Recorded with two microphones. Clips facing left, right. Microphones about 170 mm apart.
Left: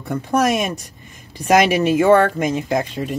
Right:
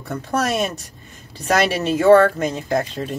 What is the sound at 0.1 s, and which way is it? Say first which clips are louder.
Speech: left 4 dB; 10° left (ahead or behind).